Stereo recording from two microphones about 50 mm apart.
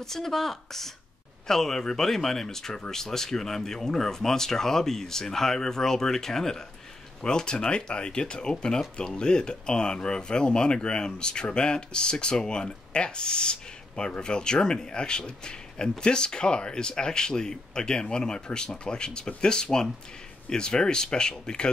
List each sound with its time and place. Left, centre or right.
0.0 s speech: centre